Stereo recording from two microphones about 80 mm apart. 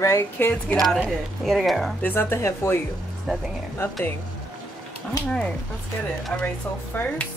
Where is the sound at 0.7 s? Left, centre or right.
Centre.